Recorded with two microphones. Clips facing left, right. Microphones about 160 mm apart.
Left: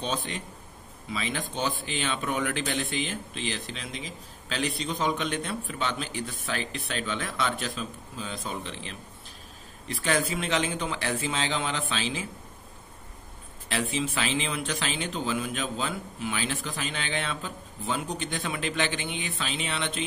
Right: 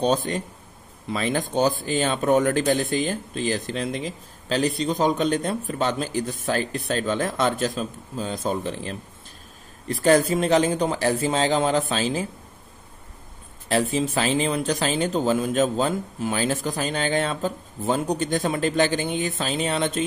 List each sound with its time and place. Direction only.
0.0 s a man's voice: 40° right (ahead or behind)
13.7 s a man's voice: 40° right (ahead or behind)